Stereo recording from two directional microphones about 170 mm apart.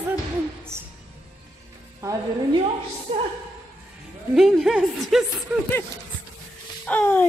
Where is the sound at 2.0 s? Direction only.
20° right (ahead or behind).